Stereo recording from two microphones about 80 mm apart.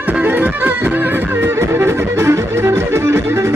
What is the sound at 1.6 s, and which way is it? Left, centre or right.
Music, right.